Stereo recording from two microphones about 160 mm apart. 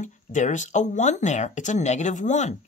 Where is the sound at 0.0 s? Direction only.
50° left (ahead or behind).